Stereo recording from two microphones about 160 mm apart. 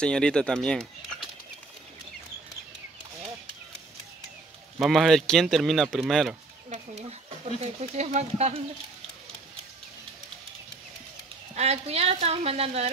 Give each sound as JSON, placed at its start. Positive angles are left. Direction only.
{"t": 0.0, "sound": "speech", "side_deg": 5}
{"t": 4.7, "sound": "speech", "side_deg": 0}
{"t": 6.7, "sound": "speech", "side_deg": -40}
{"t": 11.5, "sound": "a woman's voice", "side_deg": -40}